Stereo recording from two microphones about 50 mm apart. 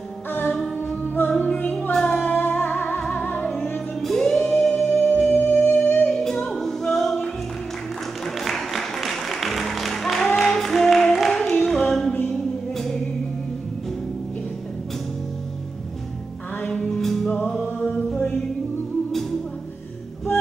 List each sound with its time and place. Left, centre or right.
0.3 s music: left
1.8 s child singing: centre
2.0 s music: left
2.3 s music: left
4.0 s music: centre
5.4 s music: left
6.1 s music: centre
8.4 s music: centre
16.8 s music: centre
17.6 s chant: left